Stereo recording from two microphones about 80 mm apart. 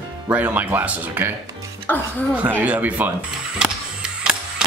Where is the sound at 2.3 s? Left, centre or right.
Right.